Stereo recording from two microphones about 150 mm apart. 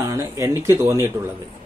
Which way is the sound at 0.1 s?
20° right (ahead or behind).